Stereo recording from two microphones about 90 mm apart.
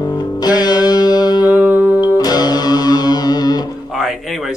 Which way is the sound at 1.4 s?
20° right (ahead or behind).